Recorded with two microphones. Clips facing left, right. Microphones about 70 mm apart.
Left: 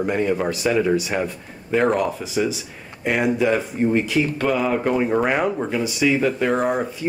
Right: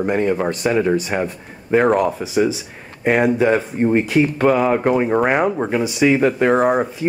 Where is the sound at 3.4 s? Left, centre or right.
Centre.